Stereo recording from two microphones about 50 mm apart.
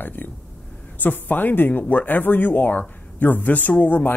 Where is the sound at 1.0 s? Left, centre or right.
Left.